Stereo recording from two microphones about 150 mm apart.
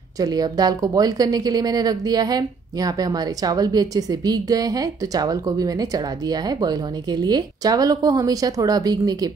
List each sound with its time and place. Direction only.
0.2 s a woman's voice: 25° right (ahead or behind)